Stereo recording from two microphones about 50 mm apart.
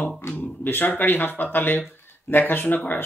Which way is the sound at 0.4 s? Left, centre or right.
Left.